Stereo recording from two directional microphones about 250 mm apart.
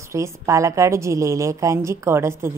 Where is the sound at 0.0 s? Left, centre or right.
Centre.